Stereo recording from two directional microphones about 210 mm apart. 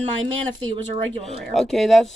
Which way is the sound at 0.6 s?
30° right (ahead or behind).